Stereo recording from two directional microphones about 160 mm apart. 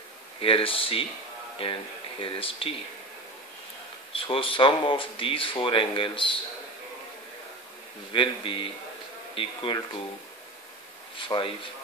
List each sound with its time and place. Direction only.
0.4 s speech: 35° left (ahead or behind)
4.1 s speech: 35° left (ahead or behind)
8.1 s speech: 30° left (ahead or behind)
11.1 s speech: 30° left (ahead or behind)